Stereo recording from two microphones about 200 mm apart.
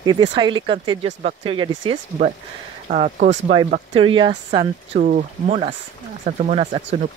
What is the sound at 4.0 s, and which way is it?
Speech, 25° right (ahead or behind).